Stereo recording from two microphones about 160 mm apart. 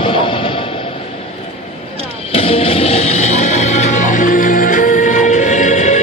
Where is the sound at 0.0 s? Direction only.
30° left (ahead or behind).